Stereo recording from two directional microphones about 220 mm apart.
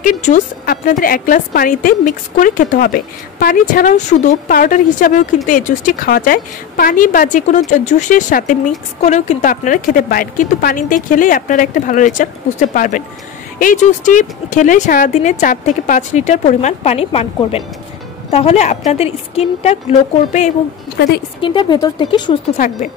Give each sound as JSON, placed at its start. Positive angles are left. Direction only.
{"t": 0.0, "sound": "a woman's voice", "side_deg": 35}
{"t": 21.4, "sound": "a woman's voice", "side_deg": 20}